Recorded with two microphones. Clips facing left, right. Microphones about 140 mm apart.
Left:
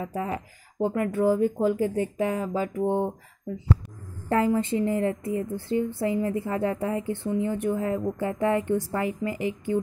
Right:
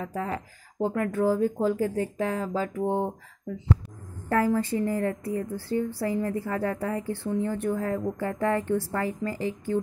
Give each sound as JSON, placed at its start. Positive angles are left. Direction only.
{"t": 0.0, "sound": "speech", "side_deg": 10}
{"t": 2.8, "sound": "speech", "side_deg": -5}
{"t": 4.6, "sound": "a woman's voice", "side_deg": 20}